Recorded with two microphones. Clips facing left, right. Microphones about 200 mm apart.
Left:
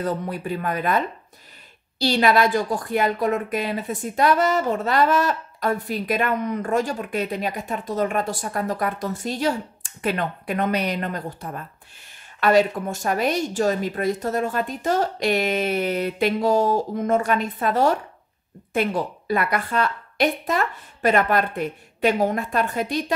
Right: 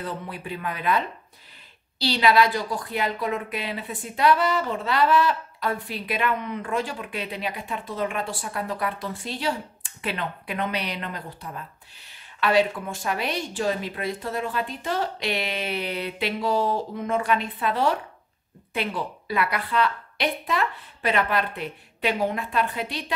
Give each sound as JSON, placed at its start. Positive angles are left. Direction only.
{"t": 0.0, "sound": "a woman's voice", "side_deg": 45}